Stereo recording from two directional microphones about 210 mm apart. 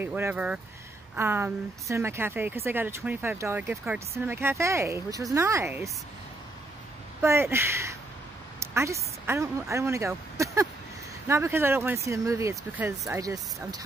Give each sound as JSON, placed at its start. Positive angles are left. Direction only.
{"t": 0.0, "sound": "a woman's voice", "side_deg": -10}
{"t": 7.2, "sound": "a woman's voice", "side_deg": -10}